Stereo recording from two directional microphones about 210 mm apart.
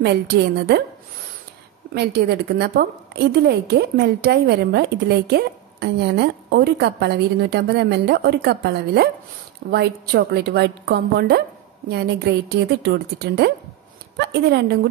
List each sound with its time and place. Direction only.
0.0 s a woman's voice: 50° right (ahead or behind)
2.0 s a woman's voice: 50° right (ahead or behind)